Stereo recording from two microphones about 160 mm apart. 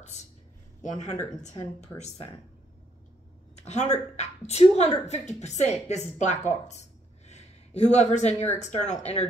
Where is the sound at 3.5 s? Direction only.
45° left (ahead or behind).